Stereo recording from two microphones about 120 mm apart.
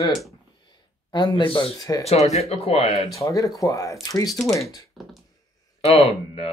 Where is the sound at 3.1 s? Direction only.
30° left (ahead or behind).